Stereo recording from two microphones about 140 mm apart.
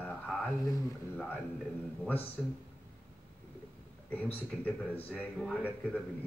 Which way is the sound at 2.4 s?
5° left (ahead or behind).